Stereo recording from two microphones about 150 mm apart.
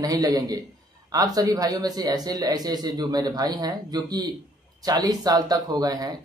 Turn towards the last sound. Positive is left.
turn(degrees=-25)  # may be behind; listen again after turning